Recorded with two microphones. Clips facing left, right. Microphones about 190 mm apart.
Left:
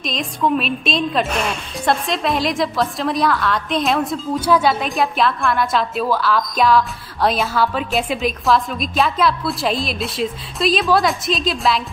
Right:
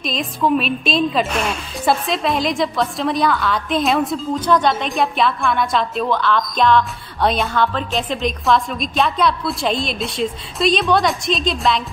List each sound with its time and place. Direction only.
0.0 s a woman's voice: centre (ahead or behind)